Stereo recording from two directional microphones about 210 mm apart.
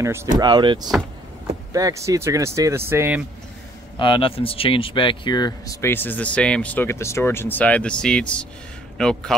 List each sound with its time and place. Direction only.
0.0 s speech: 10° right (ahead or behind)
4.0 s a man's voice: 25° left (ahead or behind); by 9.3 s 5° left (ahead or behind)